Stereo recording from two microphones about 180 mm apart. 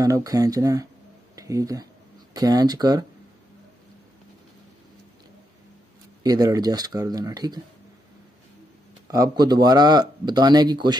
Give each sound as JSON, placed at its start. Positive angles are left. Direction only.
{"t": 0.0, "sound": "speech", "side_deg": -20}
{"t": 6.2, "sound": "speech", "side_deg": -20}
{"t": 9.0, "sound": "speech", "side_deg": -20}